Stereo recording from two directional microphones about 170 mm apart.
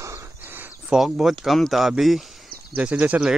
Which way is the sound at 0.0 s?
15° right (ahead or behind).